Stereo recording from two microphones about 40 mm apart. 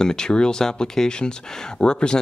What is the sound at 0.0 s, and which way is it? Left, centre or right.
Speech, centre.